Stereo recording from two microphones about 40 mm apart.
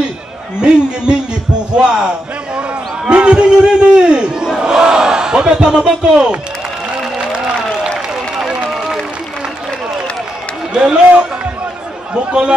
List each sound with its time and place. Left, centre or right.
0.6 s a man's voice: right
7.2 s a sound: right
8.6 s run: centre
10.7 s a man's voice: right
12.1 s speech: right